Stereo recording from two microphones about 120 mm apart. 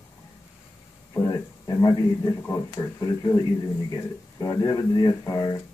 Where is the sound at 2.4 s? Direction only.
25° left (ahead or behind).